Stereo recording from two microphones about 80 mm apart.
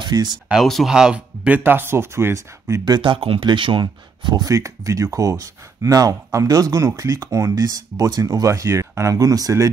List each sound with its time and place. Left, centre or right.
0.0 s speech: right
0.5 s speech: centre
0.9 s speech: centre; by 2.8 s right
2.8 s speech: right
4.5 s speech: right